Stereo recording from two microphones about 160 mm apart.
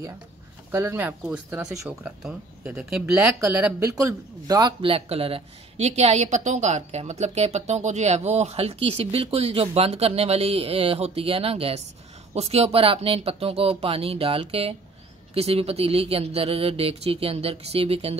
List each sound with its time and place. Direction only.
0.7 s speech: 15° right (ahead or behind)
4.0 s speech: 25° right (ahead or behind)
4.8 s a woman's voice: 35° right (ahead or behind)